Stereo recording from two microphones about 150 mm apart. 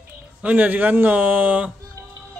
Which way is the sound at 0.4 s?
10° right (ahead or behind).